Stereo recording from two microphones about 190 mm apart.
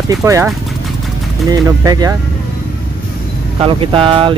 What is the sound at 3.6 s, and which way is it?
Speech, 25° right (ahead or behind).